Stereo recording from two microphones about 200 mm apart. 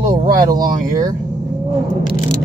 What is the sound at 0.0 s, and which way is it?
Speech, 20° right (ahead or behind).